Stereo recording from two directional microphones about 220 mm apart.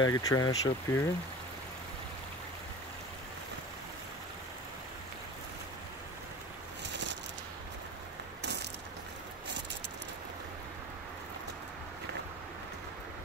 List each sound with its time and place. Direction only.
0.0 s speech: 15° left (ahead or behind)